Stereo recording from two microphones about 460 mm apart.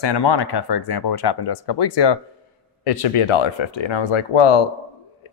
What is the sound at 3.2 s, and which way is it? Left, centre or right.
Speech, left.